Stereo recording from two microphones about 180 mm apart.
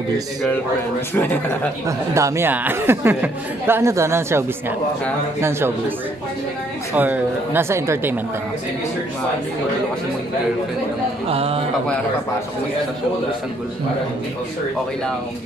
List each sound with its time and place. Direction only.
1.1 s a man's voice: 10° left (ahead or behind)
1.9 s speech: 15° right (ahead or behind)
7.0 s speech: 10° right (ahead or behind)
11.2 s speech: 35° right (ahead or behind)